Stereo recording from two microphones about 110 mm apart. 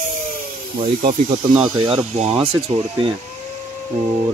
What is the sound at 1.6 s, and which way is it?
Speech, 45° right (ahead or behind).